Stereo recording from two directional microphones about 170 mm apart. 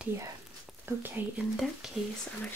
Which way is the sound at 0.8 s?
10° right (ahead or behind).